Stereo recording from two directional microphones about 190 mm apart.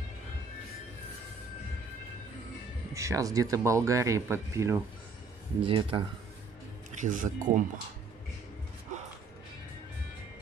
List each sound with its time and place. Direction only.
2.9 s speech: 15° right (ahead or behind)
5.6 s speech: 25° right (ahead or behind)
7.0 s speech: 45° right (ahead or behind)